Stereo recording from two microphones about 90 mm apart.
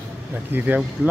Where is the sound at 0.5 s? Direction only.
20° right (ahead or behind).